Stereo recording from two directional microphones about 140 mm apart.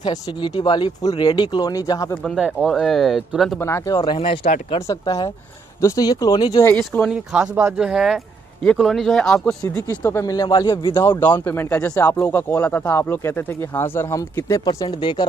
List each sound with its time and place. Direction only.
0.0 s speech: 35° left (ahead or behind)
2.2 s speech: 5° right (ahead or behind)
3.5 s speech: 20° left (ahead or behind); by 4.5 s 40° left (ahead or behind)
4.7 s speech: 25° left (ahead or behind)
6.8 s speech: 10° left (ahead or behind)
7.1 s speech: 5° right (ahead or behind)
9.8 s speech: 20° left (ahead or behind); by 11.0 s 35° left (ahead or behind)
11.0 s speech: 15° left (ahead or behind); by 15.2 s 35° left (ahead or behind)